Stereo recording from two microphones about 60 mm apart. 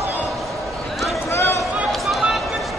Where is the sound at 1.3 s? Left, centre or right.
Left.